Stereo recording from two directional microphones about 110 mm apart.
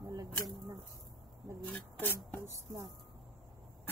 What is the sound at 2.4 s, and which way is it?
Speech, 30° right (ahead or behind).